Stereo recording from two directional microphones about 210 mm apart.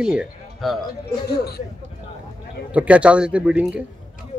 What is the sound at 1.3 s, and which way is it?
Speech, 50° left (ahead or behind).